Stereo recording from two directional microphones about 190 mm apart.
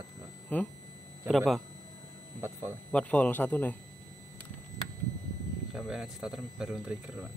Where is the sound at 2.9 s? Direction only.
5° left (ahead or behind).